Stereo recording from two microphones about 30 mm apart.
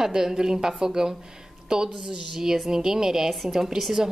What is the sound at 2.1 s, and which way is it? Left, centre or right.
A woman's voice, centre.